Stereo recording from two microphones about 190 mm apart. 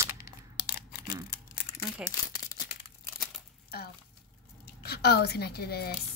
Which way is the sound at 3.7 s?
55° left (ahead or behind).